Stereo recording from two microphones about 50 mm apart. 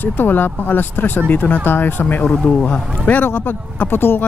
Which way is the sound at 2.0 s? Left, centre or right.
Left.